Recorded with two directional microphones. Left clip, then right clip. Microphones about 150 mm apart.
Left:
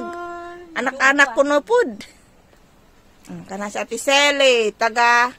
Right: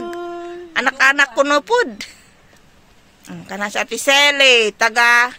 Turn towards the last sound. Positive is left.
turn(degrees=0)  # may be behind; listen again after turning